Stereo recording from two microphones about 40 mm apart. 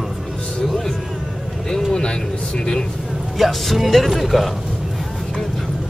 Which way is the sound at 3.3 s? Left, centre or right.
Centre.